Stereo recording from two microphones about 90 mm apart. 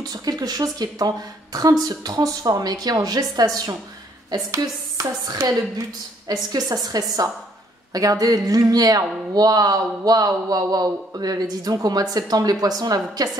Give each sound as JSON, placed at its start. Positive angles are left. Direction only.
{"t": 0.0, "sound": "a woman's voice", "side_deg": -45}